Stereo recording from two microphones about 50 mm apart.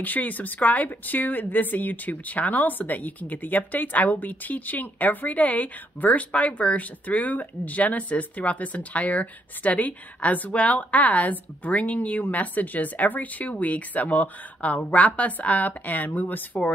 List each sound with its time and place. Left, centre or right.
0.0 s a woman's voice: left